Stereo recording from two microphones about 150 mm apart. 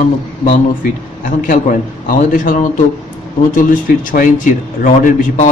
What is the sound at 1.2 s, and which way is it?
A man's voice, 65° left (ahead or behind).